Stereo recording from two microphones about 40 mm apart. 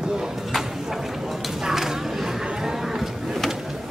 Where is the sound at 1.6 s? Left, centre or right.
Centre.